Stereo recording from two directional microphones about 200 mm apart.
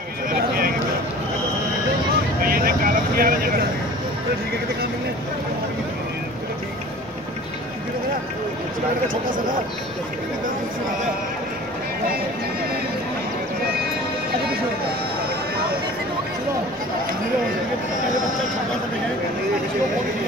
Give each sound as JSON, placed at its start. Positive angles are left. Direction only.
{"t": 0.3, "sound": "a sound", "side_deg": -45}
{"t": 2.4, "sound": "vehicle", "side_deg": -45}
{"t": 9.1, "sound": "speech", "side_deg": -45}